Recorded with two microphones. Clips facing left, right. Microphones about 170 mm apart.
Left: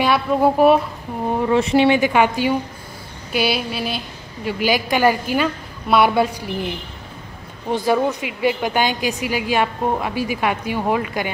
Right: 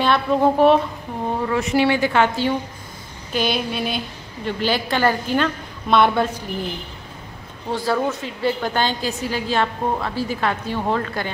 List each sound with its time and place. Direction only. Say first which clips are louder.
0.0 s a woman's voice: left 1 dB; 10° left (ahead or behind)
1.5 s a woman's voice: left 4 dB; 25° left (ahead or behind)
7.7 s a woman's voice: left 3 dB; 15° left (ahead or behind)